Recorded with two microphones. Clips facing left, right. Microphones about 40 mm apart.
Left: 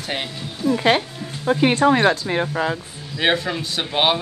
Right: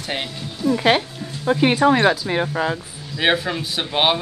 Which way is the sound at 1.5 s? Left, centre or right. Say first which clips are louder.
Even; centre.